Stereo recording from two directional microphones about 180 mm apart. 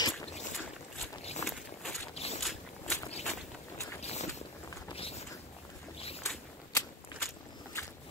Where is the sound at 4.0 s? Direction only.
35° left (ahead or behind).